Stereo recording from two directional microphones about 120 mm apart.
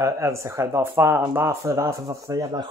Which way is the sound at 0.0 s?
25° right (ahead or behind).